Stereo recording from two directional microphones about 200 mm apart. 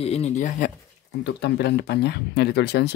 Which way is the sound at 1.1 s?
55° left (ahead or behind).